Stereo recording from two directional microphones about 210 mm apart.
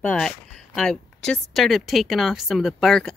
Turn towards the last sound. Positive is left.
turn(degrees=0)  # may be behind; listen again after turning